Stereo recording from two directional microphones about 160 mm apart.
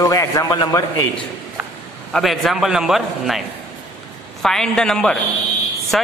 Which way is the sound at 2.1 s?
Centre (ahead or behind).